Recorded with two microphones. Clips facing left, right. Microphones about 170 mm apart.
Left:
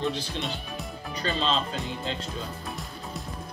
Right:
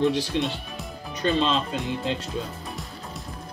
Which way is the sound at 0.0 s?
75° right (ahead or behind).